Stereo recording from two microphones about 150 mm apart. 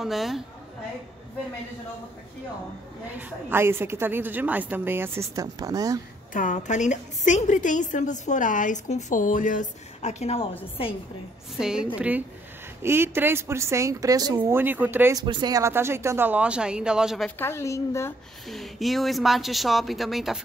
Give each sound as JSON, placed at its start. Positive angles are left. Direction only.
{"t": 0.0, "sound": "speech", "side_deg": 0}
{"t": 3.2, "sound": "a woman's voice", "side_deg": -15}
{"t": 6.3, "sound": "a woman's voice", "side_deg": 60}
{"t": 11.5, "sound": "speech", "side_deg": -5}
{"t": 12.8, "sound": "a woman's voice", "side_deg": -15}
{"t": 14.5, "sound": "speech", "side_deg": -15}
{"t": 15.1, "sound": "speech", "side_deg": -30}
{"t": 17.4, "sound": "a woman's voice", "side_deg": 15}
{"t": 18.5, "sound": "speech", "side_deg": 0}